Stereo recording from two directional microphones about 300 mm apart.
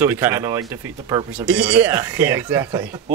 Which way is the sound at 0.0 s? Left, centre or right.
Centre.